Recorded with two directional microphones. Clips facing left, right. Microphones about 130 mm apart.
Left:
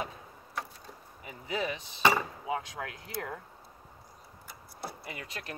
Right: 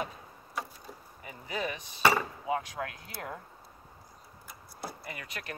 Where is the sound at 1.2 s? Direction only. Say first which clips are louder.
Left 1 dB; 25° left (ahead or behind).